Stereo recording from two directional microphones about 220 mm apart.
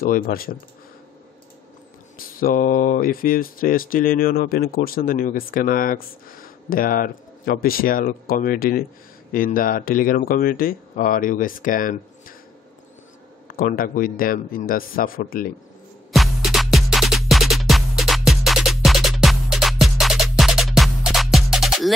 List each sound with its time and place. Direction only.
0.0 s speech: 40° left (ahead or behind)
2.1 s speech: 40° left (ahead or behind)
13.5 s speech: 40° left (ahead or behind)
16.1 s music: centre (ahead or behind)